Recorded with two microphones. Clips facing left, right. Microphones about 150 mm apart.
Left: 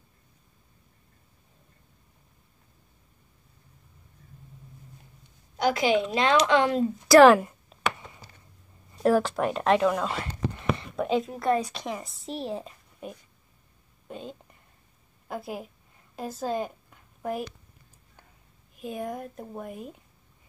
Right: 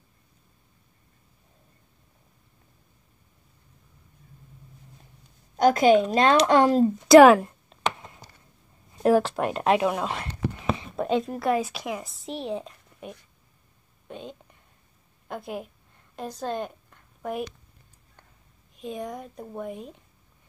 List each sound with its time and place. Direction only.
5.6 s speech: 45° right (ahead or behind)
7.3 s a sound: 5° left (ahead or behind)
8.9 s a woman's voice: 5° right (ahead or behind)
14.0 s whispering: centre (ahead or behind)
15.2 s a woman's voice: 5° left (ahead or behind)
18.8 s speech: 5° left (ahead or behind)